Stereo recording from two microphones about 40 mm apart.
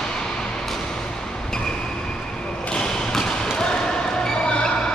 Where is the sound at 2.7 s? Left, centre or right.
Left.